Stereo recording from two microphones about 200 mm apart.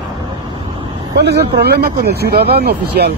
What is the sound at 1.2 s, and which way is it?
Speech, 55° right (ahead or behind).